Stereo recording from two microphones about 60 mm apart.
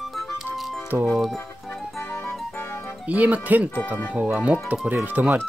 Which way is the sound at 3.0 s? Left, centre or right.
Right.